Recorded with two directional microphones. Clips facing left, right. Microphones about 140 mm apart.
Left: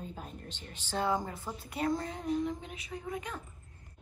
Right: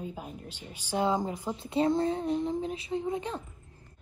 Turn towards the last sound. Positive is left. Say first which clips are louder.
# right 7 dB
turn(degrees=-25)  # may be behind; listen again after turning